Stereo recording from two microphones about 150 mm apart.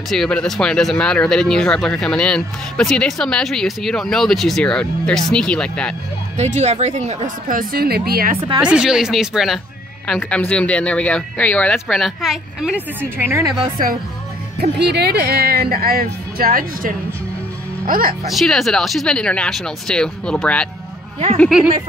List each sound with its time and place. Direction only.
0.1 s speech: 5° left (ahead or behind)
6.3 s speech: 45° right (ahead or behind); by 8.4 s 85° right
8.5 s speech: 5° right (ahead or behind)
15.0 s a woman's voice: 90° right; by 18.1 s 70° right (ahead or behind)
18.2 s speech: centre (ahead or behind)